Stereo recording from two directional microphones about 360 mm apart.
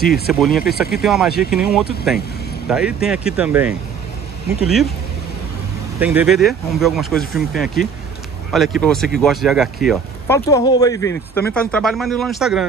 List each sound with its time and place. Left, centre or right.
0.5 s speech: left
1.0 s speech: centre
5.9 s speech: centre